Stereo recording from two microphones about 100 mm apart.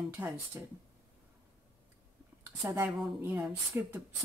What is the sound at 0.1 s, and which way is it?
Speech, 30° right (ahead or behind).